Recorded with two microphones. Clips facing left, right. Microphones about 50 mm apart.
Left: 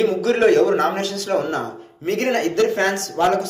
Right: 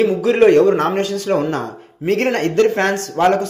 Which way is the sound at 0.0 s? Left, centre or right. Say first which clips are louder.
Right 4 dB; right.